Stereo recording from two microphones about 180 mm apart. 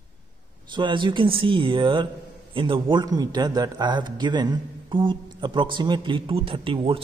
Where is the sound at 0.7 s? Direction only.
25° right (ahead or behind).